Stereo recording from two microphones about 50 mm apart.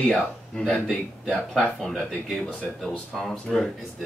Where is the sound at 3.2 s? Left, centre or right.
Centre.